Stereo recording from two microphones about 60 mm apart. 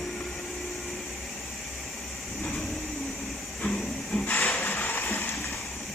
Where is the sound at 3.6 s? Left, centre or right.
Centre.